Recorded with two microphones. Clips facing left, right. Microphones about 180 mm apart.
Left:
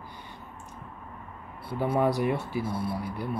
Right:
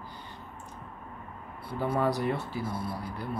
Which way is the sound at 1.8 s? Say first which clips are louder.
Left 3 dB; 15° left (ahead or behind).